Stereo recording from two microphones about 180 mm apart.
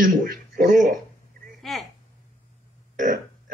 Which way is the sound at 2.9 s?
45° right (ahead or behind).